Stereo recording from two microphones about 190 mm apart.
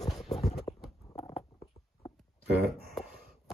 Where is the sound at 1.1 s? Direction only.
35° left (ahead or behind).